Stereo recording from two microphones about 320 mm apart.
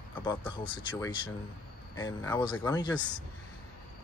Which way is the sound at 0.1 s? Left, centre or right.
Centre.